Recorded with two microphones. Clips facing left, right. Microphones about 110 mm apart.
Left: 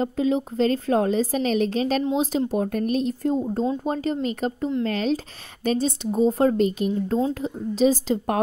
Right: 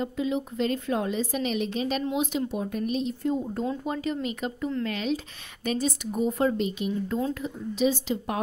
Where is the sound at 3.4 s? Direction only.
20° left (ahead or behind).